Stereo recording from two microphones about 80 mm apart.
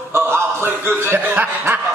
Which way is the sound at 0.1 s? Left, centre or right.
Right.